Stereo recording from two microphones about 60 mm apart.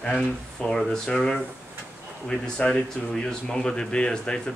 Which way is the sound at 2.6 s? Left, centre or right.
Centre.